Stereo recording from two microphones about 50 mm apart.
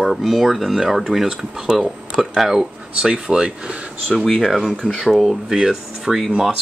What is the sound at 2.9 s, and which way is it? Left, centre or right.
Speech, centre.